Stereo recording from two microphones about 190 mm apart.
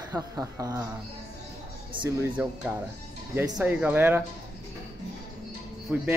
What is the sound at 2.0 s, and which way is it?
Speech, 10° right (ahead or behind).